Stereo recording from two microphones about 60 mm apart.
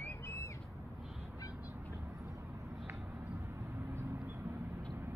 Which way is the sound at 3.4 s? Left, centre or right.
Right.